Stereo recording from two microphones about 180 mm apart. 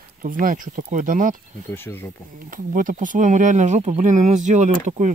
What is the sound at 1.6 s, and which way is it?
Speech, 10° left (ahead or behind).